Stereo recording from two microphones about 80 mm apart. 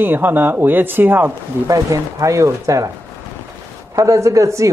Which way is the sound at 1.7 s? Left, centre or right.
Right.